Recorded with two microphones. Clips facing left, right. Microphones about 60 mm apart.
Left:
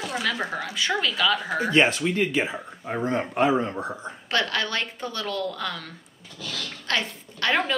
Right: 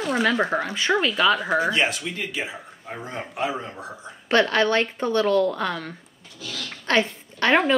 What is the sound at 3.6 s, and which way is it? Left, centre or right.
Speech, left.